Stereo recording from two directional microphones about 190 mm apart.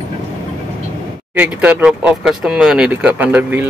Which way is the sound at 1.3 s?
10° right (ahead or behind).